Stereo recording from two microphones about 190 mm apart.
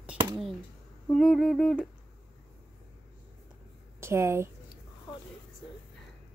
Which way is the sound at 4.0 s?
15° right (ahead or behind).